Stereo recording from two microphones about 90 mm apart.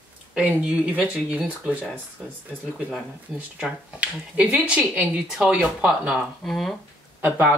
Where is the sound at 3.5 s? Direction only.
10° right (ahead or behind).